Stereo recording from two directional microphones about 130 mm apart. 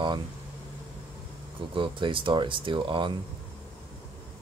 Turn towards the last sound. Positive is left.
turn(degrees=-40)  # may be behind; listen again after turning